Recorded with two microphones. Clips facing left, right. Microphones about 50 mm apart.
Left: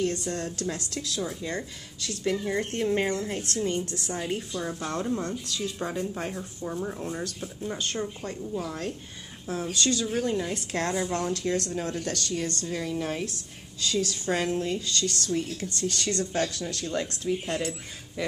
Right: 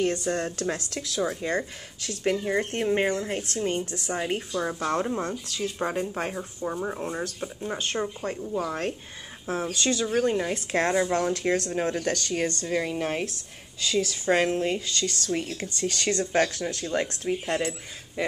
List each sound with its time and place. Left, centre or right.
0.0 s speech: right
9.7 s speech: right
14.3 s speech: right